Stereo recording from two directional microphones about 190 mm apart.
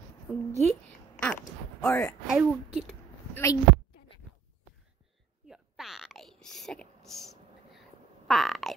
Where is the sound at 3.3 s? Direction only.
15° left (ahead or behind).